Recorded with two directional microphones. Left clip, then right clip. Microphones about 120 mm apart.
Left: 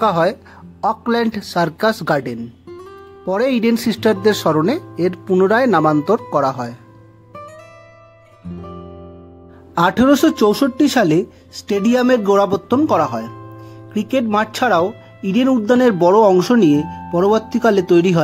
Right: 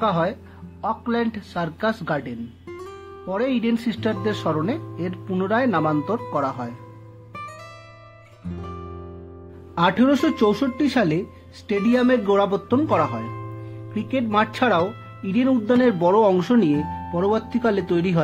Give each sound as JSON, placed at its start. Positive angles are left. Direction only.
{"t": 0.0, "sound": "speech", "side_deg": 65}
{"t": 2.7, "sound": "music", "side_deg": 0}
{"t": 3.3, "sound": "speech", "side_deg": 65}
{"t": 8.5, "sound": "music", "side_deg": 0}
{"t": 9.8, "sound": "speech", "side_deg": 40}